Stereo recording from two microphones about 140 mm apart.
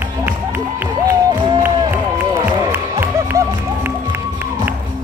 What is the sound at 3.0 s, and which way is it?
Music, 15° right (ahead or behind).